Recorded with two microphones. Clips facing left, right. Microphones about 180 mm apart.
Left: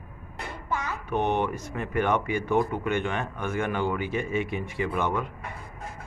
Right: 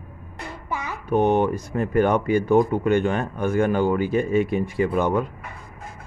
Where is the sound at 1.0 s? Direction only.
40° right (ahead or behind).